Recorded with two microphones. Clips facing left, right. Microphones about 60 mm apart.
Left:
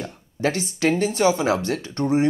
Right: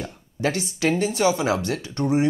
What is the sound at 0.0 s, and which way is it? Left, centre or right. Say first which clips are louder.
Speech: left 1 dB; left.